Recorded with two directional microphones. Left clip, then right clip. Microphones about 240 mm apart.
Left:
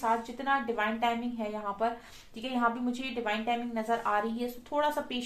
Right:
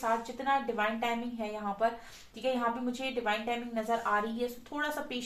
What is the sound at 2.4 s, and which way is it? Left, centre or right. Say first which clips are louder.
A woman's voice: left 1 dB; left.